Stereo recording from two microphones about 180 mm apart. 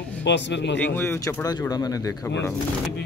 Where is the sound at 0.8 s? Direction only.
10° left (ahead or behind).